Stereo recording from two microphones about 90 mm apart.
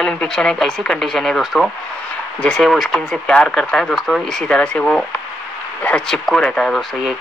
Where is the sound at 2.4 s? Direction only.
10° left (ahead or behind).